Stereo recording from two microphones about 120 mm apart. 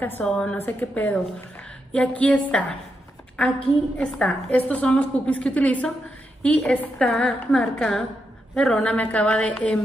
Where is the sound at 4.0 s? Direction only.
10° left (ahead or behind).